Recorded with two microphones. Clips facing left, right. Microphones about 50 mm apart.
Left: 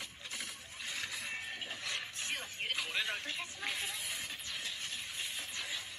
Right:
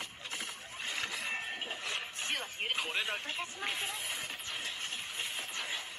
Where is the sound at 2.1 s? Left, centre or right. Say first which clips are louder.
Right 3 dB; right.